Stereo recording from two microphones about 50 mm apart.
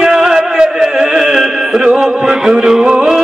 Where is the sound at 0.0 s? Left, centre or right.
Centre.